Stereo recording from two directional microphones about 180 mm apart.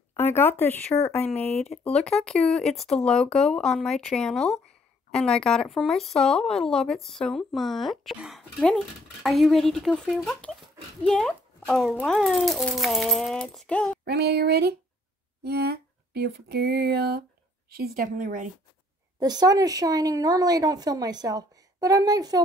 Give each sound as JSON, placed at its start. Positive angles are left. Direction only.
{"t": 0.1, "sound": "speech", "side_deg": 10}
{"t": 2.0, "sound": "speech", "side_deg": 5}
{"t": 14.0, "sound": "a sound", "side_deg": -65}
{"t": 15.4, "sound": "a woman's voice", "side_deg": -60}
{"t": 19.1, "sound": "speech", "side_deg": -20}